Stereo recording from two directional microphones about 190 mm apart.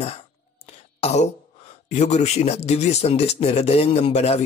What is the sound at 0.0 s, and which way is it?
Throat clearing, 30° left (ahead or behind).